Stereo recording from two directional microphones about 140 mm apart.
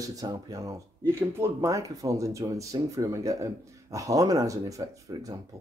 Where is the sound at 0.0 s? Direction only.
25° right (ahead or behind).